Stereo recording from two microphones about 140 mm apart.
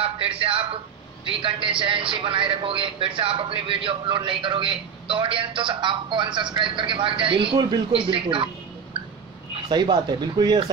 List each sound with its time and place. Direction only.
0.0 s a man's voice: 40° right (ahead or behind)
9.7 s a man's voice: 30° right (ahead or behind)